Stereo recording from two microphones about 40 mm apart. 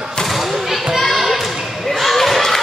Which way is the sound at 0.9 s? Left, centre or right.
Centre.